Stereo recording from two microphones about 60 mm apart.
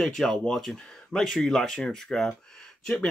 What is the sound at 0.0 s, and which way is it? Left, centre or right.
Speech, centre.